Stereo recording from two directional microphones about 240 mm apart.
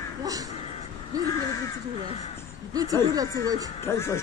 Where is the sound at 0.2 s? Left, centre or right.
Centre.